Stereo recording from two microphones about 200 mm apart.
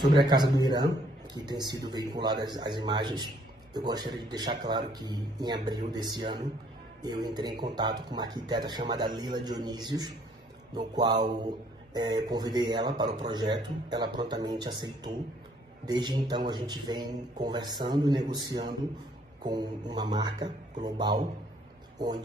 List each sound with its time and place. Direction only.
0.0 s a man's voice: 20° right (ahead or behind)